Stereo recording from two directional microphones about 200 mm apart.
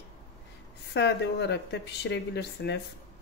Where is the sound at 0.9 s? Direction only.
60° left (ahead or behind).